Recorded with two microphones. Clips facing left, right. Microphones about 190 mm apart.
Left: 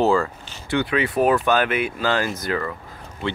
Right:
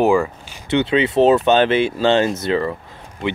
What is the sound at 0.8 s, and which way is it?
Speech, 25° right (ahead or behind).